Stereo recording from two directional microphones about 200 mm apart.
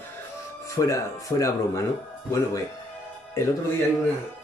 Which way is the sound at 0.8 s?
15° left (ahead or behind).